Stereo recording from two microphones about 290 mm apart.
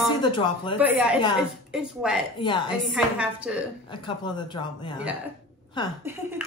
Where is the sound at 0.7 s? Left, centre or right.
Centre.